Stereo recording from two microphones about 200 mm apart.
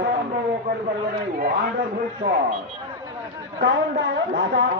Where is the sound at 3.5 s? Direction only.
60° right (ahead or behind).